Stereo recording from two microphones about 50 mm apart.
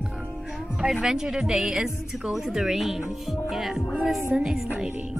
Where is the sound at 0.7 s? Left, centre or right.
Centre.